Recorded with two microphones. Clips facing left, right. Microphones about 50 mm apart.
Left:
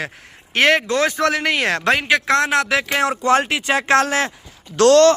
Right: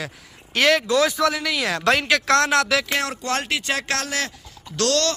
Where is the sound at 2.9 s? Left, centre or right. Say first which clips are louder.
Left 7 dB; centre.